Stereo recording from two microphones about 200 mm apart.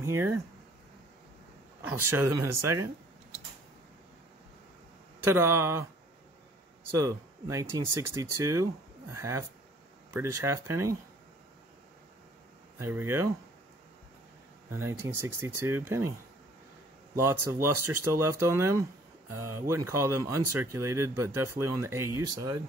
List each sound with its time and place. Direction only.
0.0 s speech: 10° right (ahead or behind)
1.9 s speech: 10° right (ahead or behind)
2.6 s a sound: 15° right (ahead or behind)
5.2 s speech: 10° right (ahead or behind)
6.9 s speech: 15° right (ahead or behind)
12.7 s speech: 10° right (ahead or behind)
14.8 s speech: 15° right (ahead or behind)
17.2 s speech: 15° right (ahead or behind)